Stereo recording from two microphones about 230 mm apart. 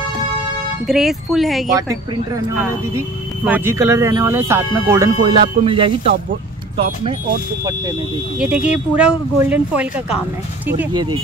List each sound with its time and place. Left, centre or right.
0.8 s speech: centre
3.4 s speech: centre
8.4 s speech: centre
10.9 s speech: centre